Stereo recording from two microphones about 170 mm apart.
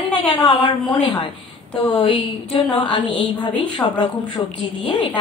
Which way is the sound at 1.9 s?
30° left (ahead or behind).